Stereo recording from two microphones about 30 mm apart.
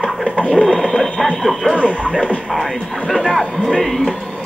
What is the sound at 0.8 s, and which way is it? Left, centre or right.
Alarm clock, centre.